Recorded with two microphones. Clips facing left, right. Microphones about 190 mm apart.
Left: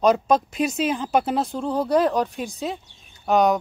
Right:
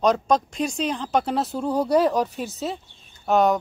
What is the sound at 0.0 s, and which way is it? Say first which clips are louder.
Speech: left 2 dB; 5° left (ahead or behind).